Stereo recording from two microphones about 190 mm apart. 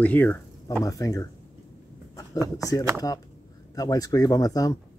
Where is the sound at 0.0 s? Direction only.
10° left (ahead or behind).